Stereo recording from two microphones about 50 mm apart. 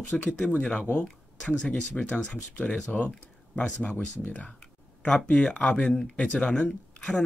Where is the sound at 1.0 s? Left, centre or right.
Centre.